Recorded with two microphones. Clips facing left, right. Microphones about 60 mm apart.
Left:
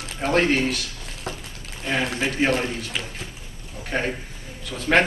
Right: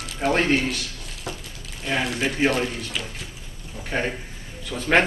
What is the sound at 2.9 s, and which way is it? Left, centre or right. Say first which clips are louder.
Speech: left 1 dB; left.